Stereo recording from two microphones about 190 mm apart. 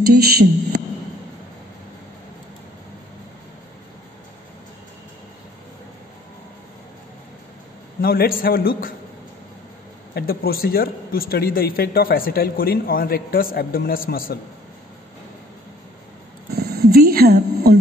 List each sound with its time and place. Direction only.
0.0 s speech: 55° right (ahead or behind)
8.0 s a man's voice: 50° left (ahead or behind)
10.1 s a man's voice: 55° left (ahead or behind)
16.5 s a sound: 55° right (ahead or behind)